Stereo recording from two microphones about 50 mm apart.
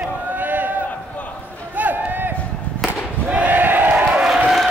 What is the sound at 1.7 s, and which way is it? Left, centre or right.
Run, right.